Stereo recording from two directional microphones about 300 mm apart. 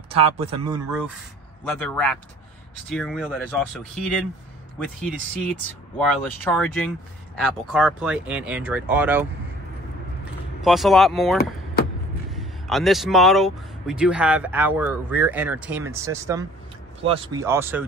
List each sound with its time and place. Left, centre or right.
0.1 s speech: centre
1.7 s a man's voice: centre
5.0 s a man's voice: centre